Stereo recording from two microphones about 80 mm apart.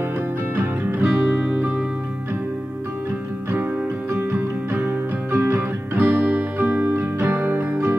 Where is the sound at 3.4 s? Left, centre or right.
Right.